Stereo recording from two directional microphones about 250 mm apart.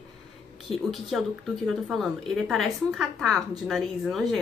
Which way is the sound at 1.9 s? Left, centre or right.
Centre.